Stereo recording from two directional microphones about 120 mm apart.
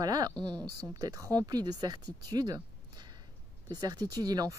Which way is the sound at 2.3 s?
30° right (ahead or behind).